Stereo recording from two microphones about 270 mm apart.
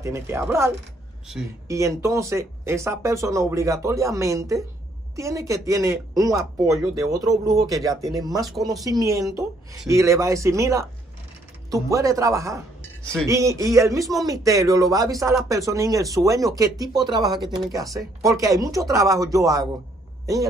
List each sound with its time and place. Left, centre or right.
0.0 s speech: centre
8.5 s speech: centre
8.8 s speech: centre